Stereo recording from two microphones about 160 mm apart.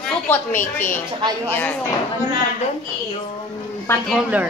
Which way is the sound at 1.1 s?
30° right (ahead or behind).